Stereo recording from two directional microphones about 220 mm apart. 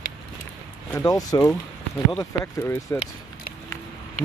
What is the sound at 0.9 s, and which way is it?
Speech, 10° left (ahead or behind).